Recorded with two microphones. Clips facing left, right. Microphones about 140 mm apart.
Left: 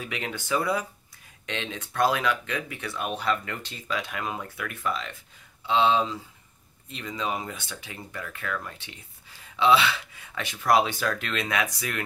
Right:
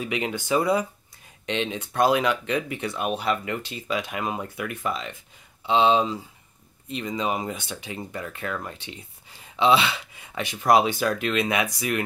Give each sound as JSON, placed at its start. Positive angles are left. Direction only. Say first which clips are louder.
{"t": 0.0, "sound": "speech", "louder": "right 6 dB", "side_deg": -20}